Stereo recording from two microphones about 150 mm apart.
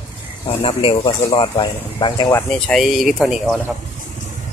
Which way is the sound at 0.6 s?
40° left (ahead or behind).